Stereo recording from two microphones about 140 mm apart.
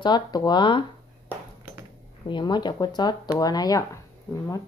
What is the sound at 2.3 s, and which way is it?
A woman's voice, 30° left (ahead or behind).